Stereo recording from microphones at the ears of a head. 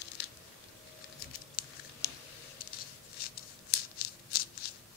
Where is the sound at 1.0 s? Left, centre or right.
Left.